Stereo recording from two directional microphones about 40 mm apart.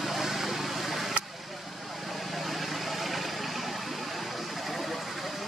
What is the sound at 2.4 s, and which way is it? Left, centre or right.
Vehicle, centre.